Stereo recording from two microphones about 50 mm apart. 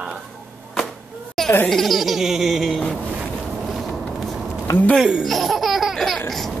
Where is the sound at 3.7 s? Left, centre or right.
Centre.